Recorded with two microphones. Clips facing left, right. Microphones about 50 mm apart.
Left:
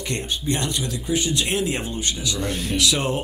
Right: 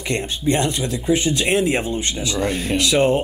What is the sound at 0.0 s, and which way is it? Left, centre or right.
Speech, right.